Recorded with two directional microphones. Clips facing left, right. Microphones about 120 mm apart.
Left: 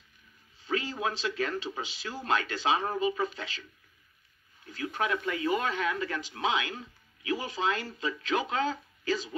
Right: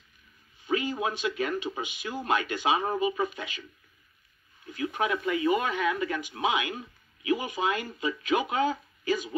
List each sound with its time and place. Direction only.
0.7 s speech: 15° right (ahead or behind)
4.6 s speech: 20° right (ahead or behind)